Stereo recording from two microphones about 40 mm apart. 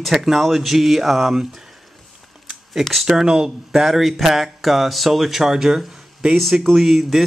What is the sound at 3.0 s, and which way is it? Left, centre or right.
Speech, centre.